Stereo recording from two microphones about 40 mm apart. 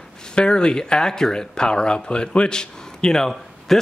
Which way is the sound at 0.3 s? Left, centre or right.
Left.